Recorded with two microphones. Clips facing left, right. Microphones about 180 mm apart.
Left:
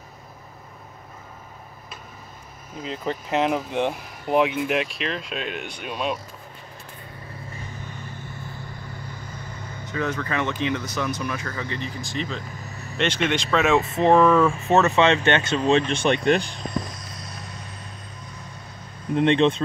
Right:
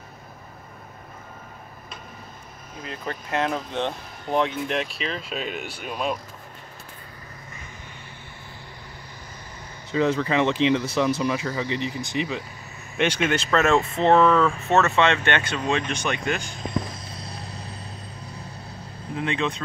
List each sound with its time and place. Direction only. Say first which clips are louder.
2.8 s speech: left 4 dB; 20° left (ahead or behind); by 6.1 s centre (ahead or behind)
9.8 s speech: right 5 dB; 25° right (ahead or behind)
12.6 s vehicle: left 5 dB; 40° left (ahead or behind)
12.9 s speech: right 1 dB; 10° right (ahead or behind); by 16.5 s 35° left (ahead or behind)
16.9 s vehicle: right 1 dB; 30° right (ahead or behind)
18.5 s vehicle: right 2 dB; 65° right (ahead or behind)
19.2 s speech: left 8 dB; 30° left (ahead or behind)